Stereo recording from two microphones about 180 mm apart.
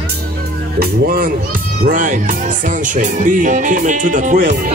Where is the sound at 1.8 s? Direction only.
45° right (ahead or behind).